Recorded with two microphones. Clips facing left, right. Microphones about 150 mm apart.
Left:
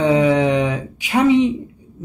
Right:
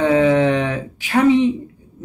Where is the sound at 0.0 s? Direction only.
15° left (ahead or behind).